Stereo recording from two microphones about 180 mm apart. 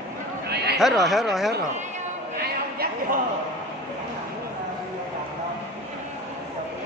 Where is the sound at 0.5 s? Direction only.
65° right (ahead or behind).